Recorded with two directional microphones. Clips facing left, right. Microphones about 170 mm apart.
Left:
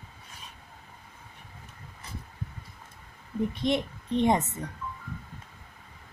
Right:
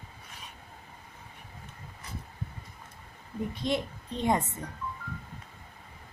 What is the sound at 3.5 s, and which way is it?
A child's voice, 20° left (ahead or behind).